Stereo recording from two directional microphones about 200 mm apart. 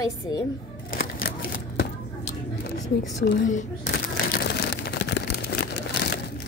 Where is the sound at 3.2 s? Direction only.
40° left (ahead or behind).